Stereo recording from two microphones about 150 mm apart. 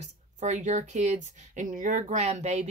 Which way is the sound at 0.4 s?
55° right (ahead or behind).